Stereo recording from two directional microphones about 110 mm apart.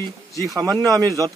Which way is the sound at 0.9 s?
30° right (ahead or behind).